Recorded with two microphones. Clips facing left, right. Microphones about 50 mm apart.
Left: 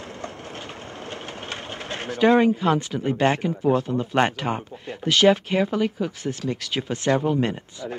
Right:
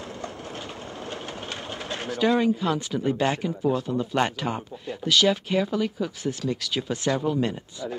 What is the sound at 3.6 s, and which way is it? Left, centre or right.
Speech, left.